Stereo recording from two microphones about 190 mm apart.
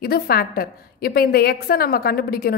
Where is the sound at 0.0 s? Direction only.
55° left (ahead or behind).